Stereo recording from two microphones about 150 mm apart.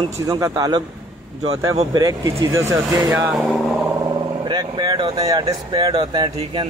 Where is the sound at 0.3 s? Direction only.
25° right (ahead or behind).